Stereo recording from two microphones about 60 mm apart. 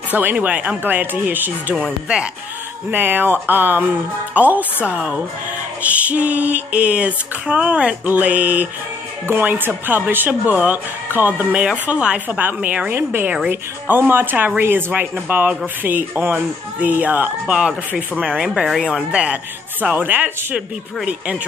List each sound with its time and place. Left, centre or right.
0.1 s speech: right
1.9 s speech: centre
2.9 s speech: right
4.8 s speech: centre
5.8 s speech: right
9.3 s speech: right
10.5 s speech: right
11.1 s speech: right
11.5 s speech: centre
12.3 s speech: right
17.6 s speech: centre
19.8 s speech: right
20.5 s speech: centre